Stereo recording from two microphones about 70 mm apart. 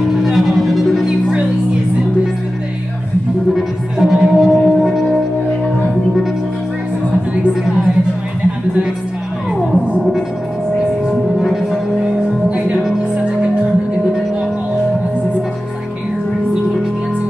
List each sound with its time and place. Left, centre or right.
0.1 s music: centre
3.5 s music: centre
11.3 s music: centre
12.0 s music: centre